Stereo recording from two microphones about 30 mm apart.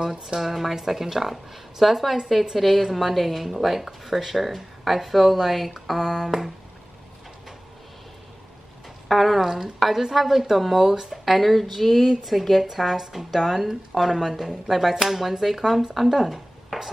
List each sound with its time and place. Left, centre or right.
0.0 s a woman's voice: centre
9.1 s a woman's voice: centre
11.2 s a woman's voice: centre
16.3 s a sound: centre